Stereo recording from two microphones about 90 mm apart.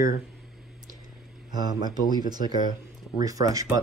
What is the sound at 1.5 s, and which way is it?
Speech, 50° right (ahead or behind).